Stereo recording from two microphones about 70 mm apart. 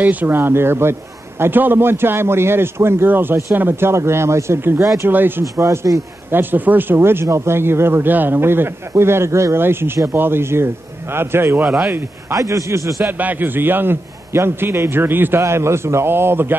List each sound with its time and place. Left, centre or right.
0.0 s a man's voice: right
5.4 s a man's voice: right
6.3 s a man's voice: right
11.6 s speech: centre
12.3 s a man's voice: right
13.2 s a man's voice: right